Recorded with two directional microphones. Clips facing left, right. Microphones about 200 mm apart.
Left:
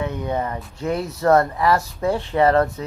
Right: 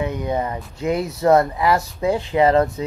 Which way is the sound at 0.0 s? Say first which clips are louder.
Right 2 dB; 15° right (ahead or behind).